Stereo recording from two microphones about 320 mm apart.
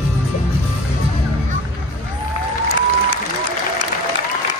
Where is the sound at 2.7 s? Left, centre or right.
Right.